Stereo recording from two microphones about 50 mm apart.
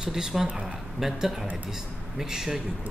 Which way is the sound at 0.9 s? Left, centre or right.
Centre.